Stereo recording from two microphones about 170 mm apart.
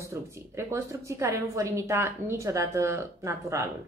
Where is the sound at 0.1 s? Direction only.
15° right (ahead or behind).